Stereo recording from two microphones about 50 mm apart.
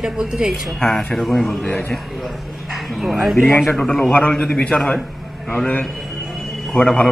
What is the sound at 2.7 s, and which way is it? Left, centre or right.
Speech, centre.